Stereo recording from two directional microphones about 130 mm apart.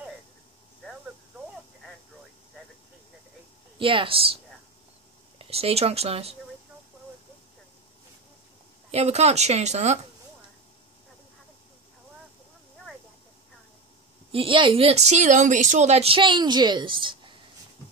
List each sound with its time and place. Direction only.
3.7 s speech: 40° right (ahead or behind)
5.4 s speech: 50° right (ahead or behind)
8.9 s speech: 55° right (ahead or behind)
14.3 s speech: 40° right (ahead or behind)